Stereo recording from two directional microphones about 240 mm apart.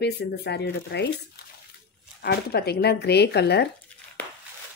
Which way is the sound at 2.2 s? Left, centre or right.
Left.